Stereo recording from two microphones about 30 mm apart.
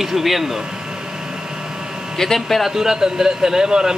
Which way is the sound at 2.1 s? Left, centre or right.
Centre.